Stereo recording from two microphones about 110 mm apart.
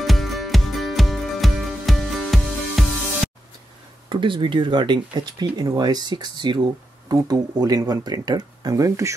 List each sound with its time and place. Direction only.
0.0 s music: centre (ahead or behind)
4.1 s speech: 50° right (ahead or behind); by 9.1 s 30° right (ahead or behind)